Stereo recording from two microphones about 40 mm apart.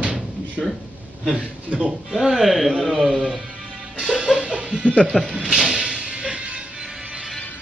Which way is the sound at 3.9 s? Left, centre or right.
Right.